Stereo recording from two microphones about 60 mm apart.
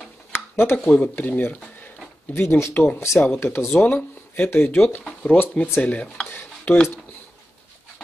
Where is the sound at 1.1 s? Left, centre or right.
Left.